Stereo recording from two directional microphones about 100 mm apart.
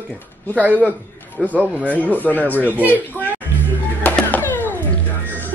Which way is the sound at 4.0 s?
15° left (ahead or behind).